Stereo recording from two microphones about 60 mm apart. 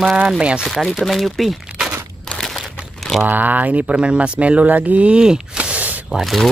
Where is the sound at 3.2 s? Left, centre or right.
Right.